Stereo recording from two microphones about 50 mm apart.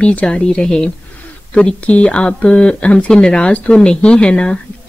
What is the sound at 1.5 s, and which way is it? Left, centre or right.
Speech, left.